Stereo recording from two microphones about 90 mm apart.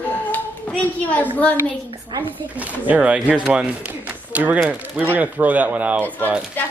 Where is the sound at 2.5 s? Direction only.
15° right (ahead or behind).